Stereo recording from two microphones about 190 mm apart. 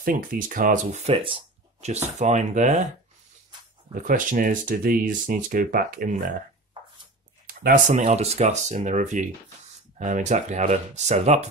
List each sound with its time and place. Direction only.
0.0 s speech: 45° right (ahead or behind)
3.9 s speech: 45° right (ahead or behind)
7.4 s speech: 45° right (ahead or behind)